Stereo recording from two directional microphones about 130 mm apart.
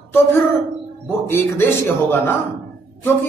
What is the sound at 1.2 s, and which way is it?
A woman's voice, 20° left (ahead or behind).